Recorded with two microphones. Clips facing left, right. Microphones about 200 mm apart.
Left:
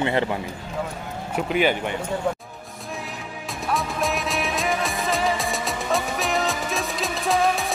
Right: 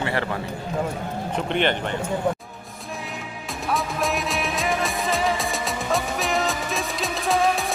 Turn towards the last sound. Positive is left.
turn(degrees=0)  # may be behind; listen again after turning